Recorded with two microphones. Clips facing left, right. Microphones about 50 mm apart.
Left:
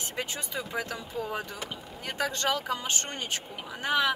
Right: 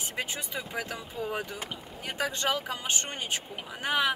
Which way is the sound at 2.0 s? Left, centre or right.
Centre.